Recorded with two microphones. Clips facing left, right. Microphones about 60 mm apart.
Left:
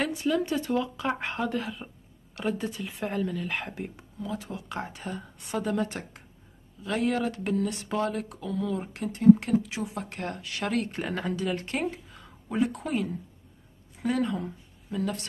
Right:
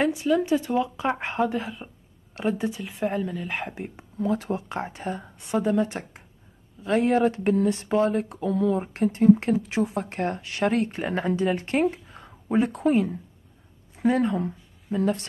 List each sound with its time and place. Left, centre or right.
0.0 s a woman's voice: centre
2.8 s a woman's voice: centre
4.2 s speech: right
4.6 s speech: right